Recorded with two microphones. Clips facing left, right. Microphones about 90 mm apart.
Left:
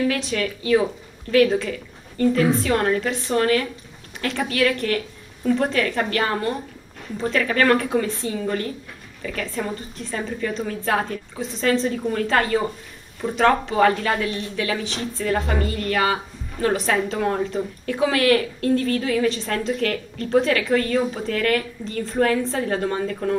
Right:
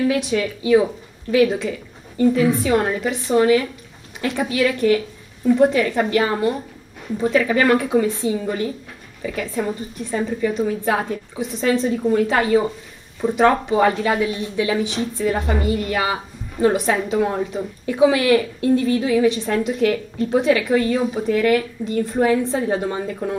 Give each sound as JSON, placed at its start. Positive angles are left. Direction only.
{"t": 0.1, "sound": "a woman's voice", "side_deg": -15}